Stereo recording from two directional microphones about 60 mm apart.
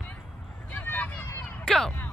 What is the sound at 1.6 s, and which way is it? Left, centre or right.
Speech, centre.